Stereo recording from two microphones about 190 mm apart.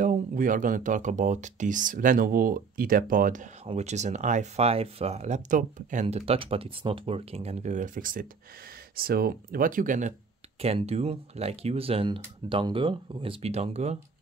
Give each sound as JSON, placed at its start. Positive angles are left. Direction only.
{"t": 0.0, "sound": "speech", "side_deg": -45}